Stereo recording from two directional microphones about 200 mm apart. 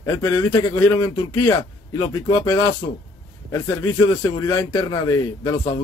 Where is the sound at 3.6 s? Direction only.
20° left (ahead or behind).